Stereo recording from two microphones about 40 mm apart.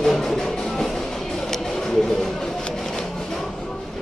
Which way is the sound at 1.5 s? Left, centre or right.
Centre.